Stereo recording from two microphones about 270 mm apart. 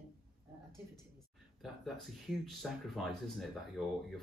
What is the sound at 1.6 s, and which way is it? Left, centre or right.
Speech, centre.